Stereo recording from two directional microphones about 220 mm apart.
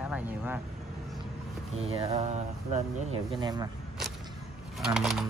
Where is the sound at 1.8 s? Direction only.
30° right (ahead or behind).